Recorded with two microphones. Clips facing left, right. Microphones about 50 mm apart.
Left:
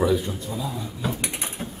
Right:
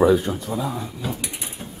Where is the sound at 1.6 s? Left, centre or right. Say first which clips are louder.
Left 3 dB; left.